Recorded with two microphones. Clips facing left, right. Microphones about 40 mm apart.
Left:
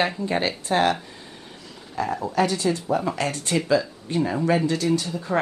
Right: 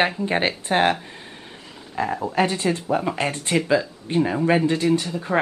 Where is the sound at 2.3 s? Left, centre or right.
Right.